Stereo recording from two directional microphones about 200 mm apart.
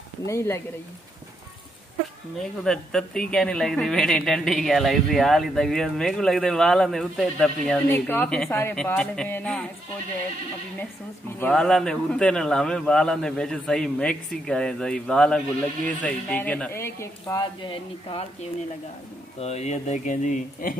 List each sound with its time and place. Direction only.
0.3 s speech: 15° left (ahead or behind)
2.6 s speech: 5° left (ahead or behind)
11.3 s speech: 5° left (ahead or behind); by 20.7 s 40° left (ahead or behind)